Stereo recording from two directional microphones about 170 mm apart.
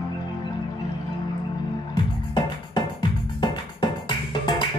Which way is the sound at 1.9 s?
25° left (ahead or behind).